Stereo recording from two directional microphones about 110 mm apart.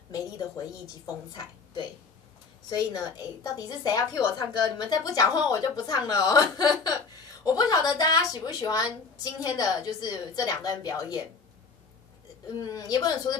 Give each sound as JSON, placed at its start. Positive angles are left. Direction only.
{"t": 1.0, "sound": "a woman's voice", "side_deg": 35}
{"t": 12.7, "sound": "a woman's voice", "side_deg": 35}